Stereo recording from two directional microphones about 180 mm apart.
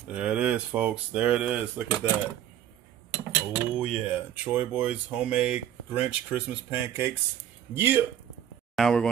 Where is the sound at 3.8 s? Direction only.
10° right (ahead or behind).